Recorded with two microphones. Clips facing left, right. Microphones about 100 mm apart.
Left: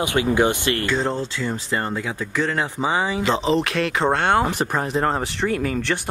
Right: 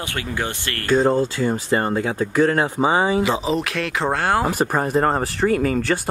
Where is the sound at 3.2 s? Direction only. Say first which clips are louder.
Left 1 dB; 5° right (ahead or behind).